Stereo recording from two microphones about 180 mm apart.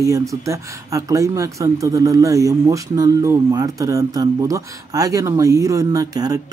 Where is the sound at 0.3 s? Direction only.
20° right (ahead or behind).